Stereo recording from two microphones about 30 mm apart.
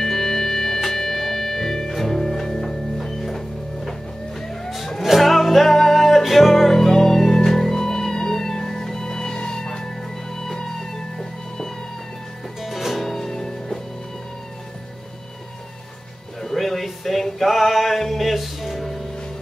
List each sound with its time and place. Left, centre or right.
0.0 s music: centre
4.6 s music: centre
12.6 s music: centre
13.0 s music: centre
16.3 s a sound: centre
17.2 s music: centre